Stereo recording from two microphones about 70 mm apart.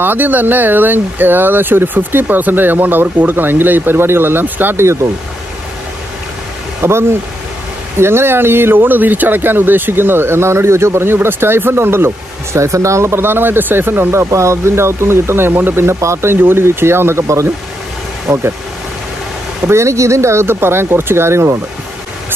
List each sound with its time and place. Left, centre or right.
0.0 s speech: right
6.8 s speech: right
18.2 s speech: right
19.7 s speech: right